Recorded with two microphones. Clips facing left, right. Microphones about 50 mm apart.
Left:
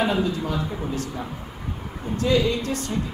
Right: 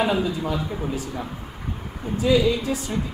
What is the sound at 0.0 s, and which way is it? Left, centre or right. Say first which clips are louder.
A woman's voice: even; centre.